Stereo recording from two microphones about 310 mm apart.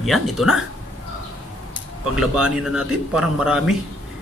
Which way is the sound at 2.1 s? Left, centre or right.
Centre.